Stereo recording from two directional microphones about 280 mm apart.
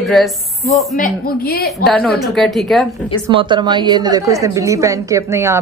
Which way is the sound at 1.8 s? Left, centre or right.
Centre.